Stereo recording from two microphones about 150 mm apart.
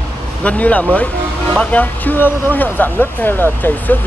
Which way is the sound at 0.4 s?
10° left (ahead or behind).